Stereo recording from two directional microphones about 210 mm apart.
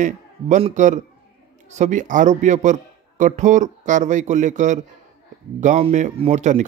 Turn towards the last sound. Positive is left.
turn(degrees=-35)  # may be behind; listen again after turning